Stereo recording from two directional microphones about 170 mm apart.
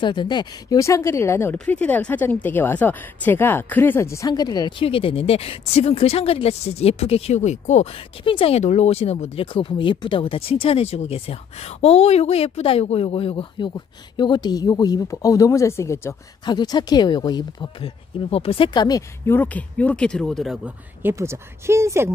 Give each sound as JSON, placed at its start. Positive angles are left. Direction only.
{"t": 0.0, "sound": "speech", "side_deg": 25}
{"t": 21.0, "sound": "speech", "side_deg": -15}